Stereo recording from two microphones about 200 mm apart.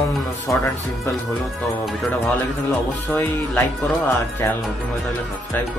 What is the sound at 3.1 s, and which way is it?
A man's voice, 10° left (ahead or behind).